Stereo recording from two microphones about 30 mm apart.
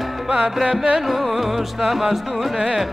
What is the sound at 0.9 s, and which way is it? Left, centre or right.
Music, centre.